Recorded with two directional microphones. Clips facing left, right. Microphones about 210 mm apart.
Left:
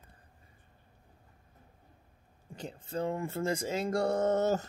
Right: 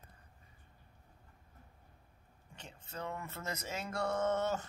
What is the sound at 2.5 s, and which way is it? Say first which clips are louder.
Speech: left 11 dB; 35° left (ahead or behind).